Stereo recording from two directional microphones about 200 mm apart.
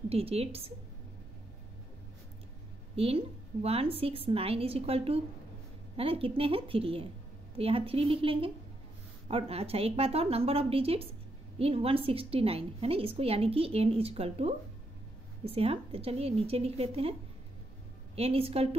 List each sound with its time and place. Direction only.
0.1 s a woman's voice: 30° right (ahead or behind)
3.0 s a woman's voice: 30° right (ahead or behind)
18.1 s a woman's voice: 30° right (ahead or behind)